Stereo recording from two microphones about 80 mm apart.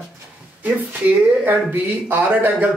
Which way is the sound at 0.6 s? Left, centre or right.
Right.